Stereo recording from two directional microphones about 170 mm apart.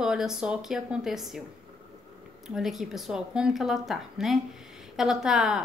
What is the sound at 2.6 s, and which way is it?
A woman's voice, centre (ahead or behind).